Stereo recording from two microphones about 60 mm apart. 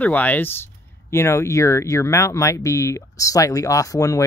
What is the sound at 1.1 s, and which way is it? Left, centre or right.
Speech, left.